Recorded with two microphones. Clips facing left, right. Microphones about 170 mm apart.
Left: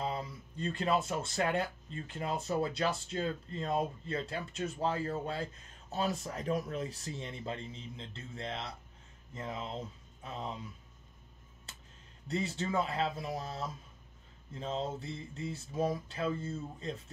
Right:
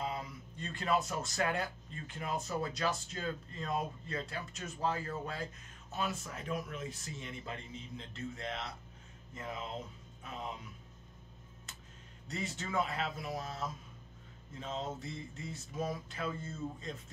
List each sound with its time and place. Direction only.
0.0 s speech: 30° left (ahead or behind)
12.3 s speech: 30° left (ahead or behind)